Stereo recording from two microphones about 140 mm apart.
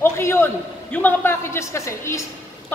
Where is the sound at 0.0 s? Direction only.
15° left (ahead or behind).